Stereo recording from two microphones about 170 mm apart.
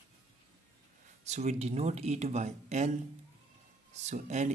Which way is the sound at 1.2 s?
40° right (ahead or behind).